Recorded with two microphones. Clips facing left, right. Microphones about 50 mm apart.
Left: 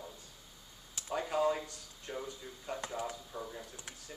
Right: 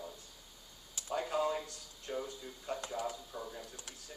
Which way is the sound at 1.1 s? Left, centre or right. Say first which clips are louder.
Left 2 dB; centre.